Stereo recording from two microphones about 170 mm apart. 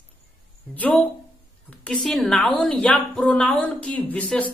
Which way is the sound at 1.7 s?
5° left (ahead or behind).